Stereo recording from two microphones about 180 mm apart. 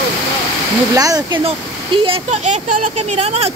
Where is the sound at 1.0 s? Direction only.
20° right (ahead or behind).